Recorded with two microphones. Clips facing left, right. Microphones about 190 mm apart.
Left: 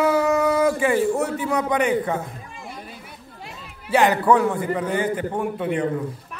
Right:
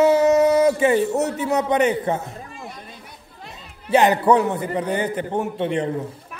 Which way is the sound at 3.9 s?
20° right (ahead or behind).